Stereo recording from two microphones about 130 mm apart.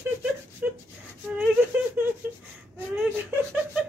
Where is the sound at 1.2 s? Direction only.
10° right (ahead or behind).